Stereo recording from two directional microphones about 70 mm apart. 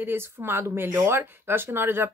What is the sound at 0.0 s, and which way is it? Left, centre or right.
Speech, right.